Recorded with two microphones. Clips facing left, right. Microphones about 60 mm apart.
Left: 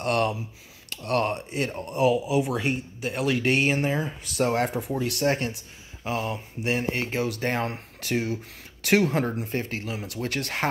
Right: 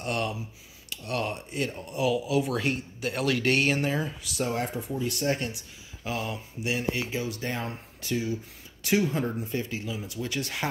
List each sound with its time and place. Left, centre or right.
0.0 s speech: left
2.2 s speech: centre
4.2 s speech: left
6.0 s speech: left
6.6 s speech: left